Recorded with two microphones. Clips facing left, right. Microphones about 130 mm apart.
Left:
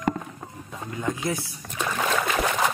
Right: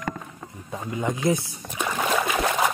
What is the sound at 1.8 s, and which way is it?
Trickle, 10° right (ahead or behind).